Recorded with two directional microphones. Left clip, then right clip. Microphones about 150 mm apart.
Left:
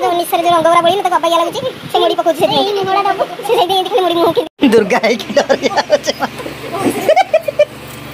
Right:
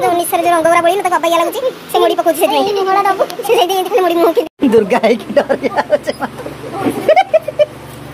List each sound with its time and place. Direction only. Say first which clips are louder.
0.0 s a child's voice: even; centre (ahead or behind)
2.5 s a child's voice: right 1 dB; 35° right (ahead or behind)
3.4 s speech: left 1 dB; centre (ahead or behind)
7.1 s a sound: right 1 dB; 5° left (ahead or behind)